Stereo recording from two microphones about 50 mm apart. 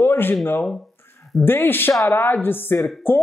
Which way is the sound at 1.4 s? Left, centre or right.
Left.